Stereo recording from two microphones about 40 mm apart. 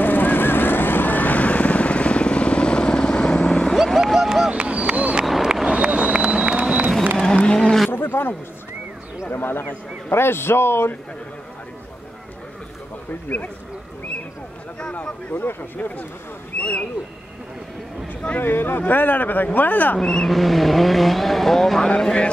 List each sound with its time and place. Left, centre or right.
0.0 s vehicle: left
3.7 s a sound: centre
4.5 s a sound: right
5.7 s vehicle: right
7.2 s vehicle: centre
7.9 s wild animals: left
9.2 s a sound: left
10.1 s a man's voice: left
13.3 s speech: left
15.3 s speech: left
16.5 s speech: left
18.4 s speech: left
20.0 s speech: centre; by 22.3 s left